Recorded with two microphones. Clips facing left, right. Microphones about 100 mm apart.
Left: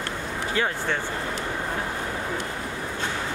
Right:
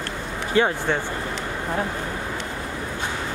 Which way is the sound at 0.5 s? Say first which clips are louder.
Right 6 dB; 25° right (ahead or behind).